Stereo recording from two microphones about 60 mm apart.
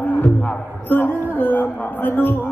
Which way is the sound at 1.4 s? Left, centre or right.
Left.